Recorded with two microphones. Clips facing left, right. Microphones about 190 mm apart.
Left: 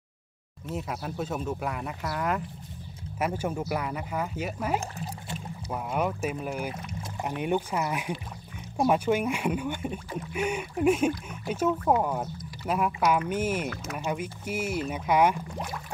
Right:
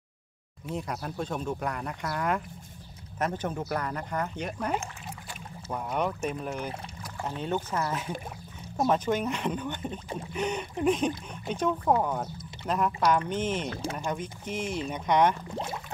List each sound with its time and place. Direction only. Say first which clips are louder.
0.7 s speech: left 1 dB; 5° left (ahead or behind)
15.5 s speech: right 1 dB; 25° right (ahead or behind)